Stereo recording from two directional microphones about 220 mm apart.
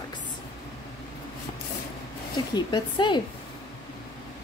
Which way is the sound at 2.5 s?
20° left (ahead or behind).